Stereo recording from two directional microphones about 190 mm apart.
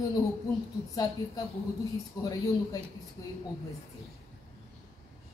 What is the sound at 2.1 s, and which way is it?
Speech, 15° left (ahead or behind).